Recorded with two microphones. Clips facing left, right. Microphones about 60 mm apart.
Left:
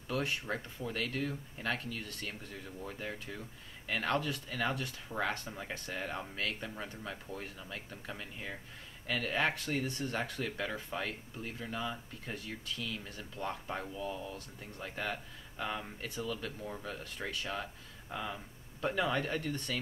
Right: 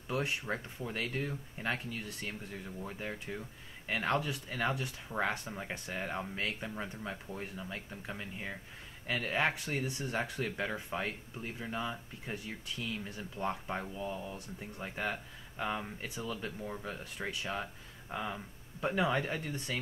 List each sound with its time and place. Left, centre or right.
0.1 s speech: centre